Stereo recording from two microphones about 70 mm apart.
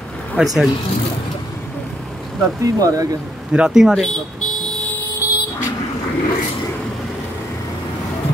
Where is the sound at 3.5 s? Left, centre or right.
Centre.